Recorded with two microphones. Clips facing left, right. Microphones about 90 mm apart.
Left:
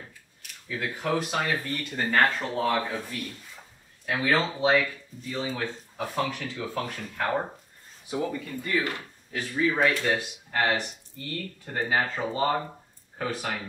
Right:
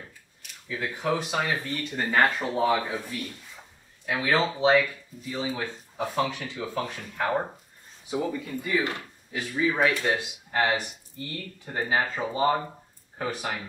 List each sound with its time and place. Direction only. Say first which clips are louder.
0.7 s speech: right 1 dB; 5° right (ahead or behind)